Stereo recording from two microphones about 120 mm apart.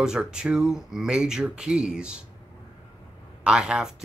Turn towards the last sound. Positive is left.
turn(degrees=-5)  # may be behind; listen again after turning